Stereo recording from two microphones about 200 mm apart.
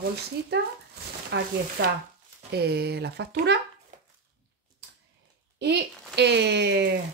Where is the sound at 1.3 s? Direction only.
65° right (ahead or behind).